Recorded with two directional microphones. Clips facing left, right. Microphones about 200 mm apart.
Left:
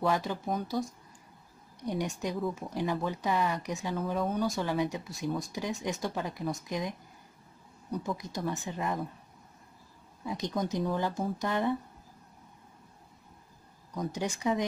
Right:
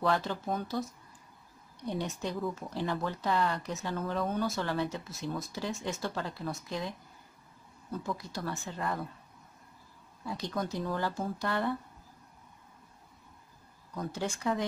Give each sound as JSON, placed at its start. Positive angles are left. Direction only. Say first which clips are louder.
{"t": 0.0, "sound": "speech", "louder": "left 1 dB", "side_deg": 15}
{"t": 10.2, "sound": "speech", "louder": "left 2 dB", "side_deg": 20}
{"t": 14.1, "sound": "speech", "louder": "left 2 dB", "side_deg": 15}